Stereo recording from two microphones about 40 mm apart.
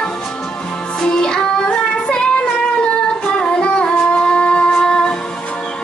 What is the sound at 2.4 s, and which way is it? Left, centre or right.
Singing, left.